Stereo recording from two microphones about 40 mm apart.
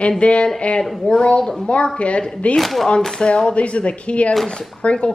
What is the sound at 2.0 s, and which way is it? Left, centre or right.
Speech, left.